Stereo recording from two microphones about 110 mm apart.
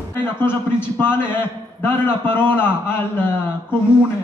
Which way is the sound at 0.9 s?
20° left (ahead or behind).